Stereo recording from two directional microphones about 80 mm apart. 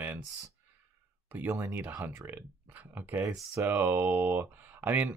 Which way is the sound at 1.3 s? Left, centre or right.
Right.